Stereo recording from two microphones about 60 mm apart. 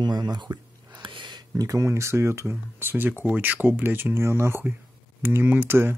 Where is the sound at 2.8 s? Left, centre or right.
Right.